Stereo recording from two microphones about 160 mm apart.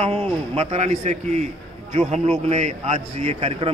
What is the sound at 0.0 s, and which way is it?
A man's voice, 40° right (ahead or behind).